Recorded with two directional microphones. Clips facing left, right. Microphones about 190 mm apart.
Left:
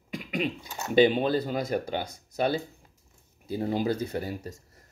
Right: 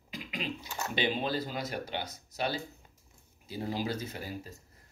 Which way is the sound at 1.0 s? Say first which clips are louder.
Left 11 dB; 55° left (ahead or behind).